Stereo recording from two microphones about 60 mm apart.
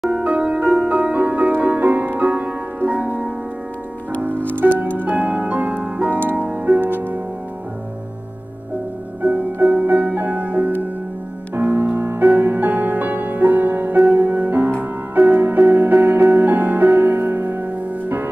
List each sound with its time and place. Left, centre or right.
0.1 s music: centre
4.6 s music: right
9.2 s music: right